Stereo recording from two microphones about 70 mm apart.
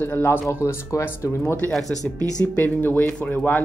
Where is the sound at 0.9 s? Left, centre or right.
Left.